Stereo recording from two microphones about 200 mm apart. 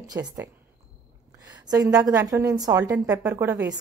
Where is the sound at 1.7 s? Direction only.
20° right (ahead or behind).